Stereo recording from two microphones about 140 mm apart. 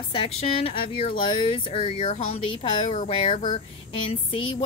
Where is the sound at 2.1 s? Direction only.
65° left (ahead or behind).